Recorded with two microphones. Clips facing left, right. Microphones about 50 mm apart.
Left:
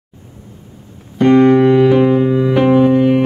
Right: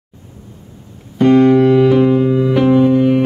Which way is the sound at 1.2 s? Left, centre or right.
Centre.